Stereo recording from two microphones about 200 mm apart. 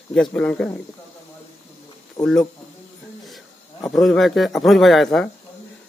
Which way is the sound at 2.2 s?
20° left (ahead or behind).